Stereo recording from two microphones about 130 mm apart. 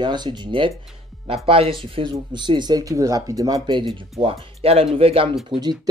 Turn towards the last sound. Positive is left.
turn(degrees=-30)  # may be behind; listen again after turning